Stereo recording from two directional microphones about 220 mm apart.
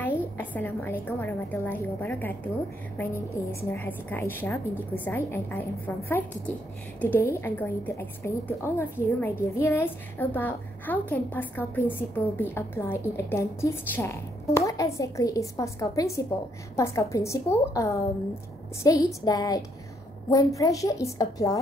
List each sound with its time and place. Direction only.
0.4 s a woman's voice: 10° left (ahead or behind)
3.6 s a woman's voice: 10° left (ahead or behind)